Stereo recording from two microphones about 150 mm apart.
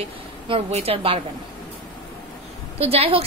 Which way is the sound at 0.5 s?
45° right (ahead or behind).